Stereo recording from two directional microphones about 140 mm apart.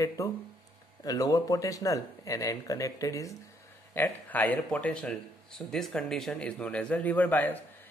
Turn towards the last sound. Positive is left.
turn(degrees=10)  # may be behind; listen again after turning